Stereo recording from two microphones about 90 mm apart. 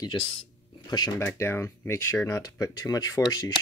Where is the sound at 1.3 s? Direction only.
30° left (ahead or behind).